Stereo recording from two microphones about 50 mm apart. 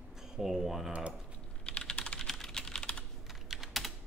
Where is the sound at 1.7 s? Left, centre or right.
Centre.